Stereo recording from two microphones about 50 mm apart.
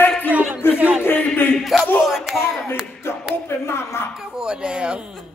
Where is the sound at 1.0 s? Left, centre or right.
Left.